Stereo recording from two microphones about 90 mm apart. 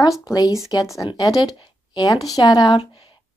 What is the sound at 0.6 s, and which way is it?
Speech, 45° left (ahead or behind).